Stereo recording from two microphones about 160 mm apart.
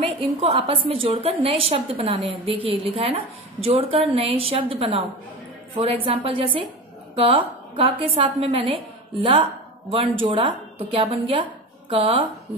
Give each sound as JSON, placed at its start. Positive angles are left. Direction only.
{"t": 0.2, "sound": "a woman's voice", "side_deg": -30}